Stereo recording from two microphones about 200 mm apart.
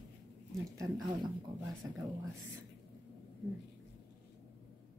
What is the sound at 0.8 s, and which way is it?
Speech, 20° right (ahead or behind).